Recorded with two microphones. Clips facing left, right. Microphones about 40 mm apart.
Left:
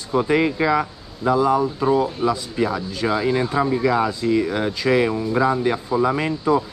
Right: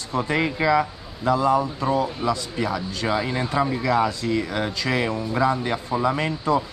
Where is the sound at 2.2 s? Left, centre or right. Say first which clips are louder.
Left 3 dB; centre.